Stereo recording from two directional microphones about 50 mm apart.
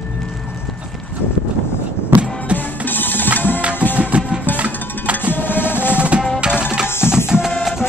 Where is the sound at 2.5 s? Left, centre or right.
Left.